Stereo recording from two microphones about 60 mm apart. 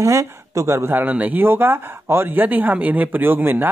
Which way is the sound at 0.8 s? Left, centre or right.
Right.